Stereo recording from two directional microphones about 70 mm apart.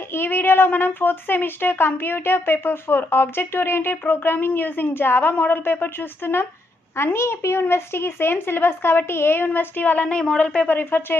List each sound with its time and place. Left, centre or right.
0.1 s speech: left
10.8 s speech: left